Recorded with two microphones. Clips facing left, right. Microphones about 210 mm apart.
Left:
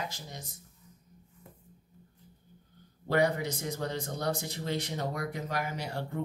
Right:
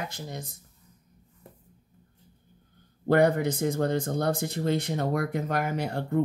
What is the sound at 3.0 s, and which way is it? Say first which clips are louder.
Speech: right 6 dB; 55° right (ahead or behind).